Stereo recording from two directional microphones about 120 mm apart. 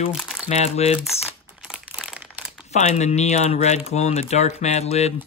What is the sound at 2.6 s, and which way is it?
Speech, 70° left (ahead or behind).